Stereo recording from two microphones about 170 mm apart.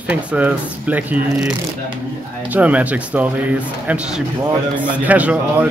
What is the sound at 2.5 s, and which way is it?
Speech, 10° right (ahead or behind).